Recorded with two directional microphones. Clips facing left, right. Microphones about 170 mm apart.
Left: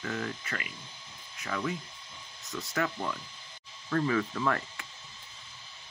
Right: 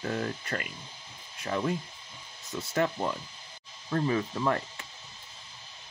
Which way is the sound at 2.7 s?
30° right (ahead or behind).